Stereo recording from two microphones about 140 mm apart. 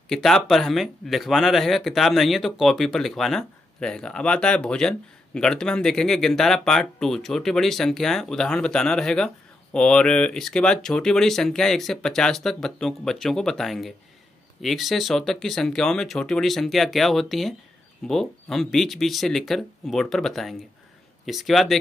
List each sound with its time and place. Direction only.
0.1 s speech: centre (ahead or behind)